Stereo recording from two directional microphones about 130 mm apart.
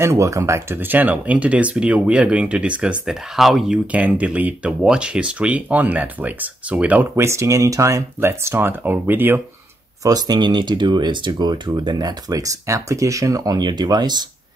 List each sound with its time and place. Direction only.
0.0 s speech: 25° right (ahead or behind)
10.0 s speech: 30° right (ahead or behind)